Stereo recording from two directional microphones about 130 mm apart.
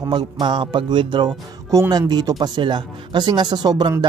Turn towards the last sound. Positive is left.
turn(degrees=-35)  # may be behind; listen again after turning